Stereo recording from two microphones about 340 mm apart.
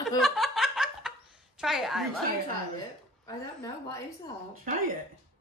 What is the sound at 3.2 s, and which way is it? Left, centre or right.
Speech, centre.